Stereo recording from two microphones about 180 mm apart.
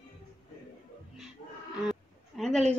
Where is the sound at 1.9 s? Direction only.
Centre (ahead or behind).